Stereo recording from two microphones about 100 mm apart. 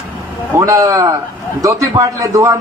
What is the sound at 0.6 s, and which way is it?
A man's voice, 35° right (ahead or behind).